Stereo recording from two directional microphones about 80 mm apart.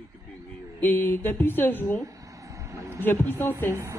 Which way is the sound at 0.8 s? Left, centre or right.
Left.